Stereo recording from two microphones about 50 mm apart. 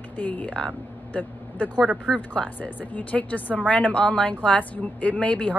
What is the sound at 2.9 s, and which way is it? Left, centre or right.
A woman's voice, left.